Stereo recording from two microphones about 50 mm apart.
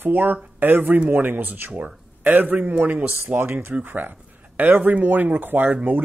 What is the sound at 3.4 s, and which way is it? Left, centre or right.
Speech, right.